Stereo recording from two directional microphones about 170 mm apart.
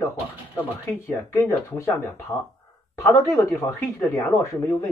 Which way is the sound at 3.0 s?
15° left (ahead or behind).